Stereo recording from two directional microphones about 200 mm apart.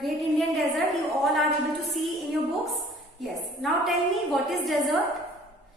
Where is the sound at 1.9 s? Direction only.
Centre (ahead or behind).